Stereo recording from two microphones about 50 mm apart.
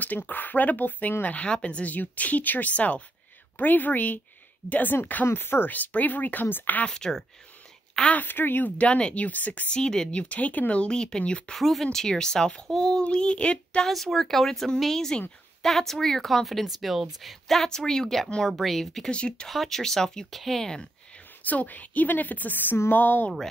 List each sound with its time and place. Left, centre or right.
0.0 s speech: left
6.9 s speech: centre
8.1 s speech: left
8.8 s speech: left
9.7 s speech: centre
11.5 s speech: centre
13.0 s speech: centre
13.8 s speech: centre
19.0 s speech: centre
19.5 s speech: centre
21.5 s speech: left